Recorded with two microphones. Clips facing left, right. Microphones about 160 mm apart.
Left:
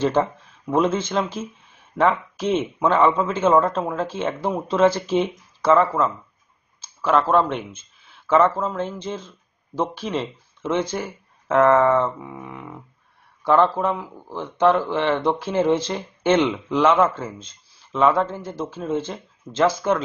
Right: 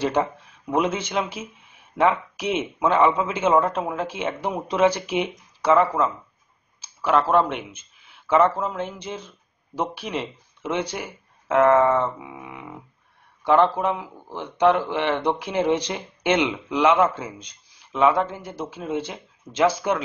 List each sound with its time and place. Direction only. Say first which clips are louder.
0.7 s speech: left 3 dB; 15° right (ahead or behind)